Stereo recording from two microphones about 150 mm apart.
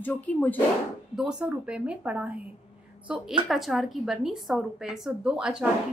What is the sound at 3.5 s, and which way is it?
Speech, centre (ahead or behind).